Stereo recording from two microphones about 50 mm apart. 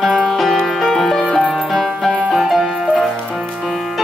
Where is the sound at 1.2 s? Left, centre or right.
Left.